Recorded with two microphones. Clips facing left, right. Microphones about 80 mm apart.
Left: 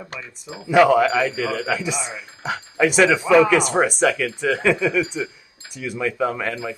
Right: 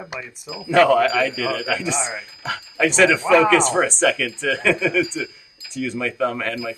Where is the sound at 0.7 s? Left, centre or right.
Centre.